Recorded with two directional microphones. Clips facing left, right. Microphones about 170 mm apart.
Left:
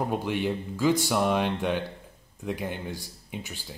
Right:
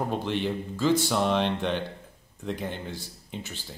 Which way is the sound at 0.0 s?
10° left (ahead or behind).